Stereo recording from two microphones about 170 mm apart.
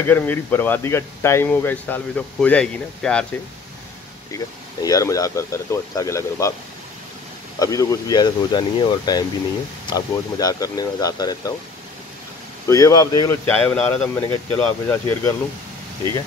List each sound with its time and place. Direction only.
0.0 s speech: 10° left (ahead or behind)
4.8 s speech: 20° left (ahead or behind)
7.5 s speech: 20° left (ahead or behind)
12.6 s speech: 20° left (ahead or behind)
13.5 s speech: 10° left (ahead or behind)